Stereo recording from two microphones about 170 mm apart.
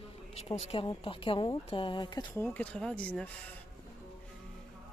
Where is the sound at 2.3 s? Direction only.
10° left (ahead or behind).